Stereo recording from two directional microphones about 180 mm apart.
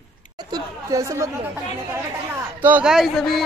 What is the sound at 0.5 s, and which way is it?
Speech, 20° right (ahead or behind).